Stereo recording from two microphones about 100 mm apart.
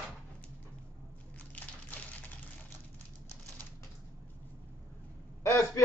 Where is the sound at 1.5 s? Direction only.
15° left (ahead or behind).